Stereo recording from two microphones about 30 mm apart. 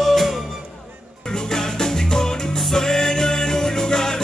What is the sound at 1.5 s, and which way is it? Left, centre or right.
Music, centre.